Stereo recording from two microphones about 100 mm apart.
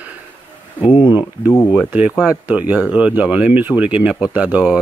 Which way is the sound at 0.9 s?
60° left (ahead or behind).